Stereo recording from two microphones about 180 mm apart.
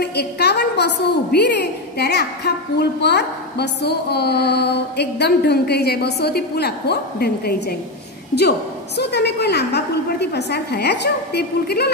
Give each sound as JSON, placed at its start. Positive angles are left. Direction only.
{"t": 0.0, "sound": "a woman's voice", "side_deg": 65}